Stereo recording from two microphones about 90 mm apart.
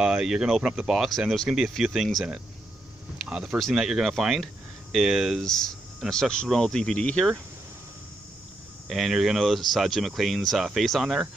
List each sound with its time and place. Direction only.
0.0 s speech: 10° right (ahead or behind)
3.3 s speech: 10° right (ahead or behind)
5.4 s speech: 5° left (ahead or behind)
8.8 s speech: centre (ahead or behind)